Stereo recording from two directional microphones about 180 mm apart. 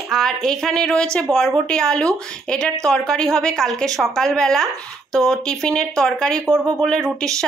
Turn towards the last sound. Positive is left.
turn(degrees=5)  # may be behind; listen again after turning